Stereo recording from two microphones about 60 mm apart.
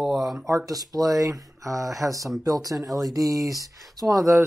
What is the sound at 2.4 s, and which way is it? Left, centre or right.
Speech, right.